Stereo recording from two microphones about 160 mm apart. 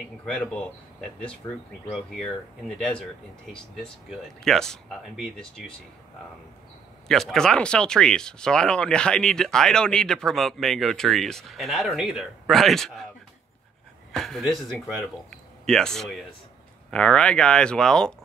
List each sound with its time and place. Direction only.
0.2 s speech: 5° left (ahead or behind)
1.4 s speech: 20° left (ahead or behind)
1.9 s speech: 5° left (ahead or behind)
3.5 s speech: centre (ahead or behind)
7.1 s speech: 5° left (ahead or behind)
14.1 s speech: centre (ahead or behind)